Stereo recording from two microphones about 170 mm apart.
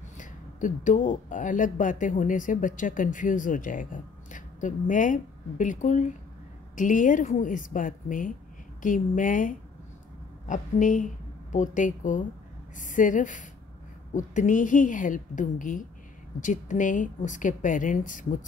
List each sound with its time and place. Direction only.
0.2 s speech: 50° left (ahead or behind)